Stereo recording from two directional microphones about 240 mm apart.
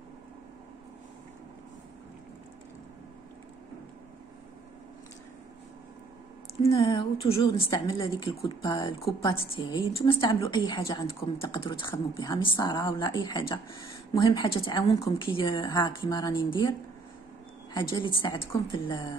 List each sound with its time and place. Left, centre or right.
6.8 s a woman's voice: left
17.7 s a woman's voice: centre